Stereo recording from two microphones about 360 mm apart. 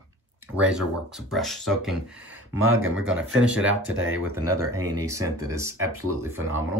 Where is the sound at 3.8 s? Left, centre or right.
Right.